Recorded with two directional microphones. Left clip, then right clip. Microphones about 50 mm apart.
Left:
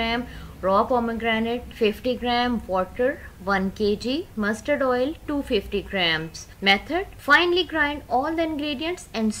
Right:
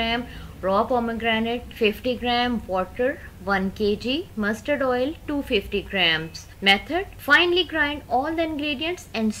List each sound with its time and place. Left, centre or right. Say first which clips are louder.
0.7 s a woman's voice: left 1 dB; centre